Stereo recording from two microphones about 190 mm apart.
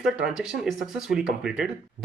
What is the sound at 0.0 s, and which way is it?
Speech, 5° right (ahead or behind).